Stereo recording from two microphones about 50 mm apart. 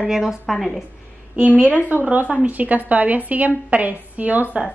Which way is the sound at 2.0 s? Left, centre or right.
Right.